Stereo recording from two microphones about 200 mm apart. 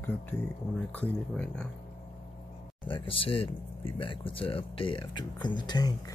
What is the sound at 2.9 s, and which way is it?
Speech, 25° left (ahead or behind).